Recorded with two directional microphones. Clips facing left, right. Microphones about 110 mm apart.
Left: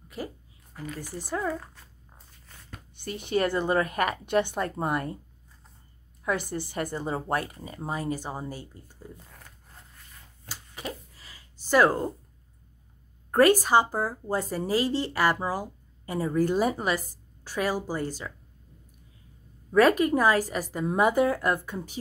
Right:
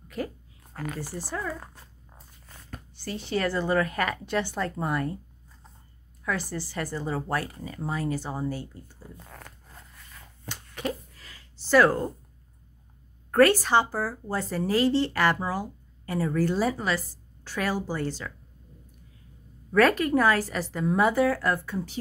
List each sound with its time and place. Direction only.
3.2 s speech: 20° left (ahead or behind)
6.2 s speech: 20° left (ahead or behind)
10.8 s a sound: 5° left (ahead or behind)
11.7 s a woman's voice: 15° left (ahead or behind)
13.3 s a woman's voice: 15° left (ahead or behind)
19.7 s a woman's voice: 10° left (ahead or behind)